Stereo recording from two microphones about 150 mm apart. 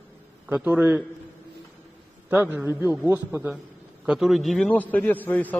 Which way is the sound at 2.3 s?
10° right (ahead or behind).